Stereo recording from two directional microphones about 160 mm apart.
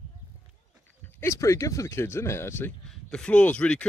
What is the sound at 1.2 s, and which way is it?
Speech, 20° left (ahead or behind).